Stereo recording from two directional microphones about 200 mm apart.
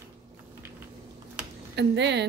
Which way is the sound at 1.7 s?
60° right (ahead or behind).